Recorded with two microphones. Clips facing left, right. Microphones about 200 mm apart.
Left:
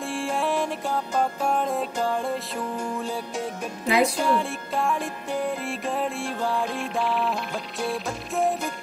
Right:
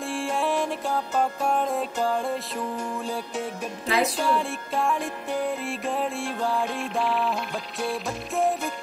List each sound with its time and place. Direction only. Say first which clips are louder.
0.0 s music: even; centre (ahead or behind)
3.8 s a woman's voice: left 3 dB; 15° left (ahead or behind)
4.2 s music: left 1 dB; centre (ahead or behind)